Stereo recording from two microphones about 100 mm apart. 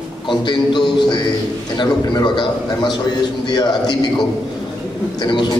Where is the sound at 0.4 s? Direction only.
50° left (ahead or behind).